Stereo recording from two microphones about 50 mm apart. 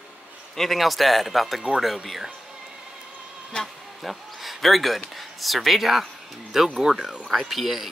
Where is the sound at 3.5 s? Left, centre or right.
Centre.